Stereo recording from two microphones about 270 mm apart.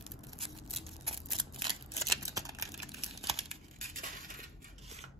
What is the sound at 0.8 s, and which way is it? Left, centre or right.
Scissors, right.